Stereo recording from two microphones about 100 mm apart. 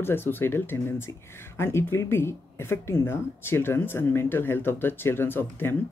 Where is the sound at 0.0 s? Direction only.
20° left (ahead or behind).